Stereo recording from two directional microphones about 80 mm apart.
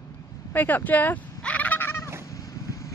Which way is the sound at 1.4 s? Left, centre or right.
Centre.